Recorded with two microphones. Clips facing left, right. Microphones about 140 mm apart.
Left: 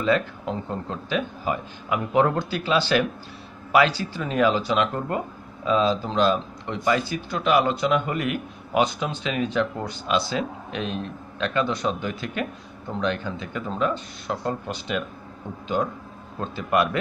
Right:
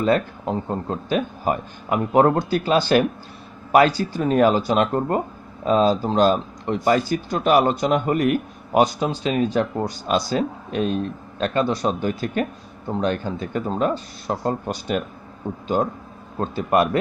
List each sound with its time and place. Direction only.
0.0 s speech: 40° right (ahead or behind)